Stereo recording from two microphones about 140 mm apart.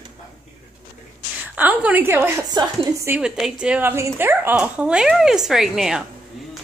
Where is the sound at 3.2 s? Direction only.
5° right (ahead or behind).